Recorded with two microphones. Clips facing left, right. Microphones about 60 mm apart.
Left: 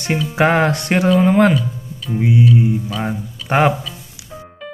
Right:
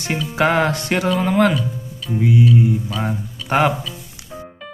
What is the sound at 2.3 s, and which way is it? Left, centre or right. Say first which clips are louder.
Music: left 1 dB; centre.